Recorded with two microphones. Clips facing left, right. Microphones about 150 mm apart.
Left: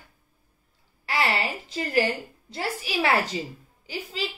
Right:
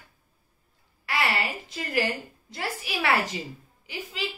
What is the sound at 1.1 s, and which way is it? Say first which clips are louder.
A woman's voice: left 2 dB; 30° left (ahead or behind).